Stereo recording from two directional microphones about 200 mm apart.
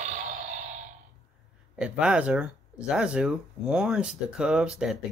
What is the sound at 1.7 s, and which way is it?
Speech, 5° right (ahead or behind).